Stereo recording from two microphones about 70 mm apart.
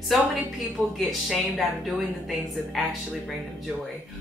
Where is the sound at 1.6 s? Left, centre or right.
Centre.